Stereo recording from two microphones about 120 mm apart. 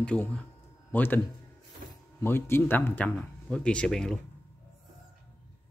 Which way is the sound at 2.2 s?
20° left (ahead or behind).